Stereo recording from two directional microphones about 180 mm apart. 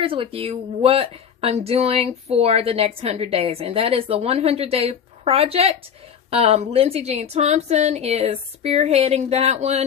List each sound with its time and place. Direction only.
0.0 s a woman's voice: 30° right (ahead or behind)